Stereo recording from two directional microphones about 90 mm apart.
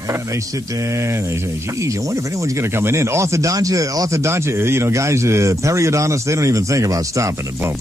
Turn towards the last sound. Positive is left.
turn(degrees=-35)  # may be behind; listen again after turning